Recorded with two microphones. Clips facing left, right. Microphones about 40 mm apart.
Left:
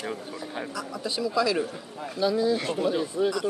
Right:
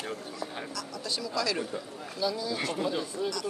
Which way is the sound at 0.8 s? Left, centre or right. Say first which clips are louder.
Left 7 dB; centre.